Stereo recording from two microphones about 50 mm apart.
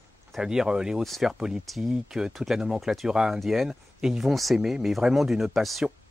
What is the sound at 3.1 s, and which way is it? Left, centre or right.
Speech, centre.